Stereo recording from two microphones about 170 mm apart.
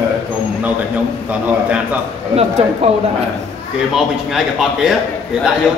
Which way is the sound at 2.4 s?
35° right (ahead or behind).